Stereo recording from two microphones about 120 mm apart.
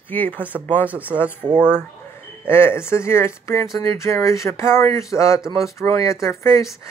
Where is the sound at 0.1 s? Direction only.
15° left (ahead or behind).